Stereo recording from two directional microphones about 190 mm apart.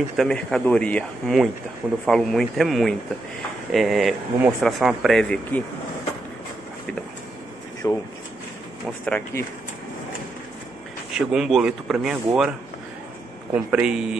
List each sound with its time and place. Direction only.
0.2 s speech: 5° left (ahead or behind)
7.8 s speech: 15° left (ahead or behind)
9.0 s speech: 5° left (ahead or behind)
11.1 s speech: 5° right (ahead or behind)